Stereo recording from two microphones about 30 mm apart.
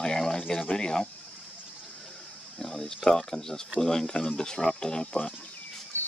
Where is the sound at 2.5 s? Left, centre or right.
Centre.